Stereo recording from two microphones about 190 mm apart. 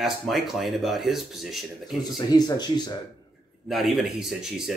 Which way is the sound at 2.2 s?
20° left (ahead or behind).